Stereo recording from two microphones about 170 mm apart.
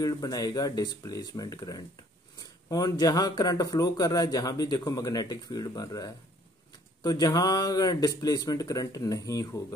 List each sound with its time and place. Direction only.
0.0 s speech: 20° left (ahead or behind)